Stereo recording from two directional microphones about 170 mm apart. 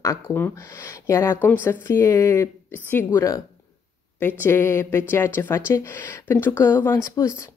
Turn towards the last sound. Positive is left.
turn(degrees=15)  # may be behind; listen again after turning